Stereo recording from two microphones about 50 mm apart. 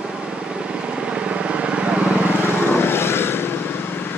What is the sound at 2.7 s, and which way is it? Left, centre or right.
Vehicle, left.